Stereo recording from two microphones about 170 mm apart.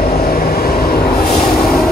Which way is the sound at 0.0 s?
65° left (ahead or behind).